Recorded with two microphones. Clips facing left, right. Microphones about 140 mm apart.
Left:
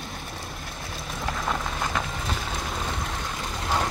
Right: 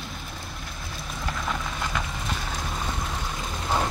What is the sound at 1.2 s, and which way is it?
Vehicle, 30° left (ahead or behind).